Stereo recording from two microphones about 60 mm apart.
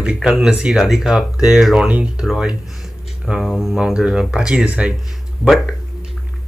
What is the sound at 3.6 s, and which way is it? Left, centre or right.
Speech, centre.